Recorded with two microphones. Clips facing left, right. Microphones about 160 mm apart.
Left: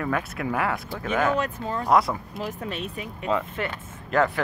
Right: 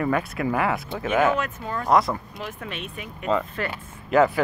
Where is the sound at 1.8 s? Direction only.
5° left (ahead or behind).